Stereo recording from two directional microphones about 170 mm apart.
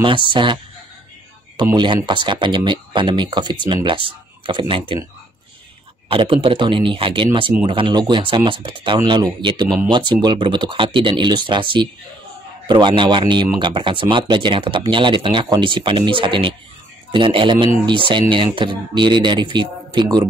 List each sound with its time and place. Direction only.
0.0 s speech: 30° right (ahead or behind)
2.0 s speech: 25° right (ahead or behind)
6.0 s speech: 30° right (ahead or behind)